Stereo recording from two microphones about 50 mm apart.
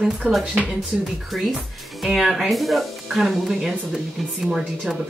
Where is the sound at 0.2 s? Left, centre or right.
Centre.